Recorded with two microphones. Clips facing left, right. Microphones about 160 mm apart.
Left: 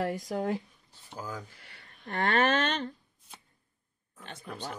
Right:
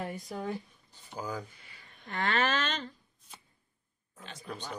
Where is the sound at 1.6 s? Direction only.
70° left (ahead or behind).